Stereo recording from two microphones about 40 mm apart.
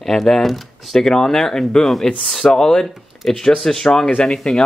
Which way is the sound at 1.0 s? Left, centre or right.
Centre.